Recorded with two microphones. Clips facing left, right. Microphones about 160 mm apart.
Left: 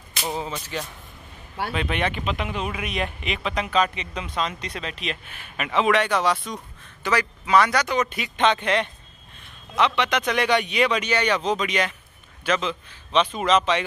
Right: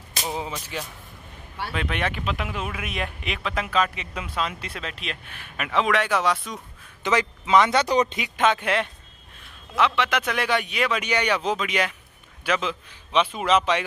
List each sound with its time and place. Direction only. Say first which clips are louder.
0.3 s a man's voice: left 2 dB; 10° right (ahead or behind)
7.0 s speech: right 1 dB; 20° right (ahead or behind)
8.4 s a man's voice: left 1 dB; 5° right (ahead or behind)